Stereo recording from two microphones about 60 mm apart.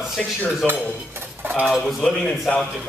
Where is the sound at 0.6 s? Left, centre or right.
Right.